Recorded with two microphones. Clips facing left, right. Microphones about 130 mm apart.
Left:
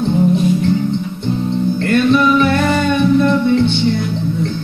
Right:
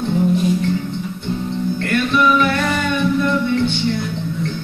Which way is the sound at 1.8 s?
30° left (ahead or behind).